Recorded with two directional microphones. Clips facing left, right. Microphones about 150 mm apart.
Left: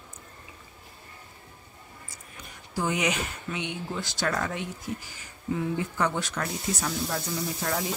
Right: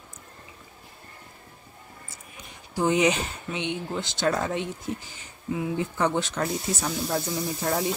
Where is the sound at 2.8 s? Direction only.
25° right (ahead or behind).